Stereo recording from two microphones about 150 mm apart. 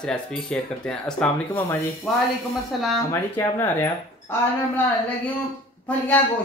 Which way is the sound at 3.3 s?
15° left (ahead or behind).